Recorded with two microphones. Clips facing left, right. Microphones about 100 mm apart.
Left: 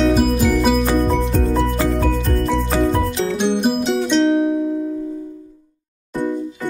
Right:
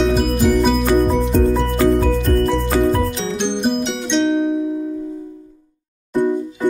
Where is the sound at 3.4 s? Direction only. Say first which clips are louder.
Left 1 dB; 5° left (ahead or behind).